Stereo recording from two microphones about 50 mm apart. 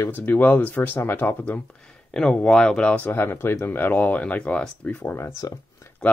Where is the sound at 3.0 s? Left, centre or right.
Left.